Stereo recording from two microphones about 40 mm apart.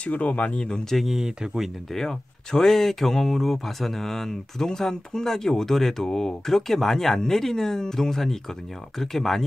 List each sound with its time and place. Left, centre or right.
0.0 s speech: left
0.8 s speech: centre
1.1 s speech: centre
2.0 s speech: centre